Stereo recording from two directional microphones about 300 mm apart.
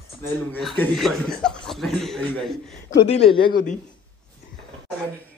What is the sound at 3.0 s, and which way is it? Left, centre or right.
Speech, centre.